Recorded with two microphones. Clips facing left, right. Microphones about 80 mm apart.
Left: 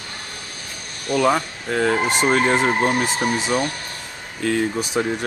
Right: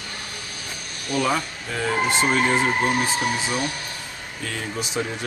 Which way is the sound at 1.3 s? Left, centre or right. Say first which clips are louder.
Left 4 dB; left.